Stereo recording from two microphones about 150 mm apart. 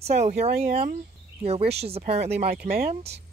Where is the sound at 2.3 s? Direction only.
85° right.